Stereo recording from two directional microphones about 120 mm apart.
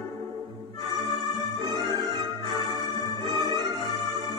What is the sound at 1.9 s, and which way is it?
Music, 40° right (ahead or behind).